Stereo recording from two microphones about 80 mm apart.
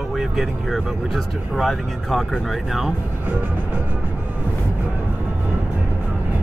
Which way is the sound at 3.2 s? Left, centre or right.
Right.